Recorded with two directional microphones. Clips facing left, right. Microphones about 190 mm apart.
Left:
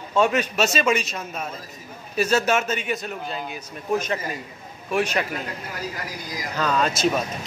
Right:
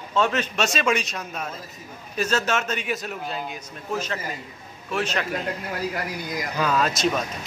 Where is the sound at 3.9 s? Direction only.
15° left (ahead or behind).